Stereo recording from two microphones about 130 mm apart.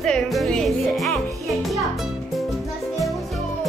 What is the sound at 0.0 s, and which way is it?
Music, 5° left (ahead or behind).